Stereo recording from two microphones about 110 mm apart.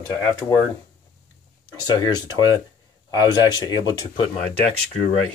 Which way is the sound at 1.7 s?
40° left (ahead or behind).